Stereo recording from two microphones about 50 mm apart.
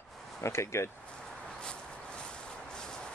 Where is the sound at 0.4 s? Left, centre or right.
Left.